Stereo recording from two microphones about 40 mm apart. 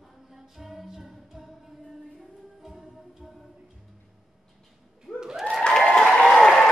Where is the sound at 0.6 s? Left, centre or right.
Centre.